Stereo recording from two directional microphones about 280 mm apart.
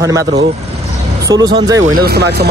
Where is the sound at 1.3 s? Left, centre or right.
Centre.